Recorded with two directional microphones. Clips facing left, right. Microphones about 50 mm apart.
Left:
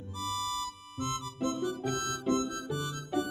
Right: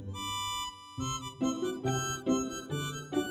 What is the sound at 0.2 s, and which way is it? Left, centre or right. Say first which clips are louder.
Music: left 2 dB; right.